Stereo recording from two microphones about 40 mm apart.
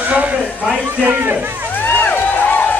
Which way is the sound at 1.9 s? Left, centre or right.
Left.